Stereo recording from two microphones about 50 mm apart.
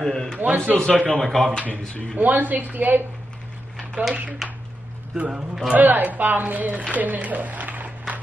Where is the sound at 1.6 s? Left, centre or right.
Right.